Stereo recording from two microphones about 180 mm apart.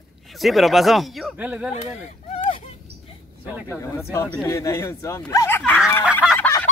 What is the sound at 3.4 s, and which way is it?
Speech, 10° right (ahead or behind).